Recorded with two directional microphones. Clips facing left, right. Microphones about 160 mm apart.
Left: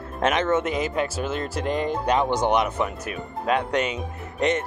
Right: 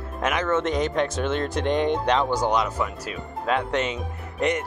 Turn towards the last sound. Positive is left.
turn(degrees=20)  # may be behind; listen again after turning